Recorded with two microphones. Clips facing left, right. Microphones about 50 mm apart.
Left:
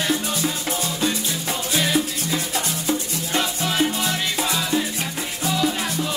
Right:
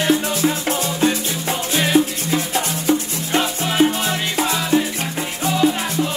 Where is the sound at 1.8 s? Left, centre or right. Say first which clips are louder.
Right 6 dB; right.